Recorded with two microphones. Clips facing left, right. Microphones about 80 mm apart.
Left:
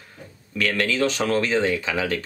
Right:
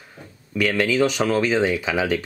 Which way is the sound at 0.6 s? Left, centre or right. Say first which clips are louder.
Right 3 dB; centre.